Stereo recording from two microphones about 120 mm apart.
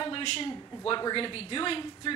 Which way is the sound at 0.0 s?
45° left (ahead or behind).